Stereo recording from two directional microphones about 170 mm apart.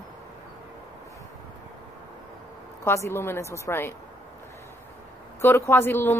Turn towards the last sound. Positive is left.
turn(degrees=15)  # may be behind; listen again after turning